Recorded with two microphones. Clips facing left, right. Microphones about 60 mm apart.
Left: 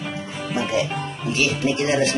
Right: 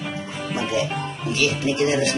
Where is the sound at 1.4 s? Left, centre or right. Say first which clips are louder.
Right 1 dB; left.